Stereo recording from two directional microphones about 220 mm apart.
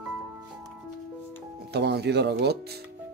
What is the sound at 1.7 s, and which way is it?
Speech, 50° right (ahead or behind).